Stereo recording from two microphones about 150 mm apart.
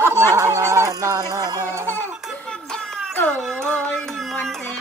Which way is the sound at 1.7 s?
15° left (ahead or behind).